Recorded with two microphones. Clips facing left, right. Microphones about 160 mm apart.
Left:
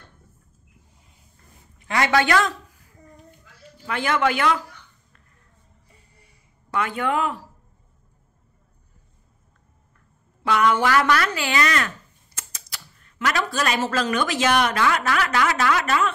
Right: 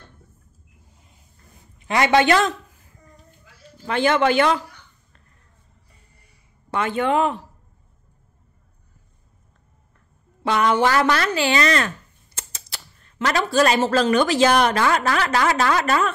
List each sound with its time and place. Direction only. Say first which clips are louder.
1.9 s a woman's voice: right 3 dB; 20° right (ahead or behind)
6.7 s a woman's voice: right 3 dB; 25° right (ahead or behind)
10.4 s a woman's voice: right 1 dB; 30° right (ahead or behind)